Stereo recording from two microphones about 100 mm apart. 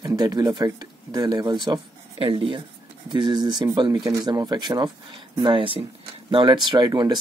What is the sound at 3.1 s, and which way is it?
Speech, 50° right (ahead or behind).